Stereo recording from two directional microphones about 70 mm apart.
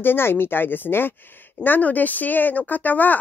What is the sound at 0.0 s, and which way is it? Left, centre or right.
Speech, left.